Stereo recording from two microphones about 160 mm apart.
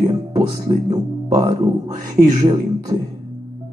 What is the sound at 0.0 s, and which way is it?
Music, 25° right (ahead or behind).